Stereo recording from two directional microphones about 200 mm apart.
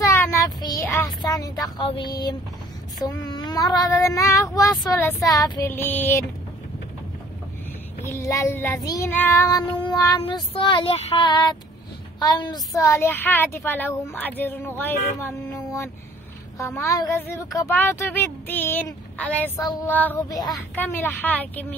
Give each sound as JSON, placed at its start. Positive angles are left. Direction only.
{"t": 0.0, "sound": "child singing", "side_deg": 15}
{"t": 3.0, "sound": "speech", "side_deg": 20}
{"t": 8.0, "sound": "speech", "side_deg": 15}
{"t": 8.8, "sound": "child singing", "side_deg": 15}
{"t": 12.2, "sound": "speech", "side_deg": 20}